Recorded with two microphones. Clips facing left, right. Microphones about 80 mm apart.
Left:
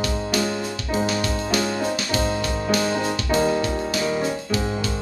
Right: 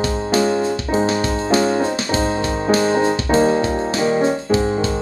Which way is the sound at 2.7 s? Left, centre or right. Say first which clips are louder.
Right 7 dB; right.